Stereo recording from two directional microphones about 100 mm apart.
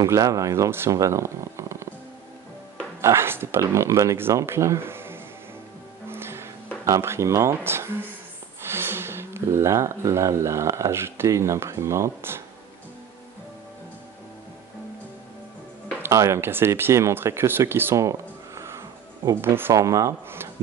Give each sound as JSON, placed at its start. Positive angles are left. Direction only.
{"t": 0.0, "sound": "speech", "side_deg": -35}
{"t": 3.0, "sound": "speech", "side_deg": -25}
{"t": 6.0, "sound": "music", "side_deg": -25}
{"t": 6.8, "sound": "speech", "side_deg": -25}
{"t": 16.0, "sound": "speech", "side_deg": -30}
{"t": 19.7, "sound": "speech", "side_deg": -35}